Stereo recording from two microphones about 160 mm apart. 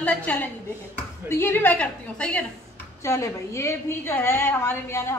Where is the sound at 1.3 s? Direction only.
15° left (ahead or behind).